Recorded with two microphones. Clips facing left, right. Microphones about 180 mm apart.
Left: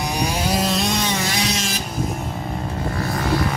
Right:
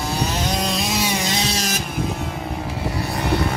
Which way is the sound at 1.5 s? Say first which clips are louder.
Right 1 dB; 40° right (ahead or behind).